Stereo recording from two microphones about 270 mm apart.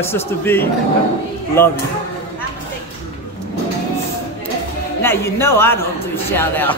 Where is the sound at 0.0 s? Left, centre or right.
Centre.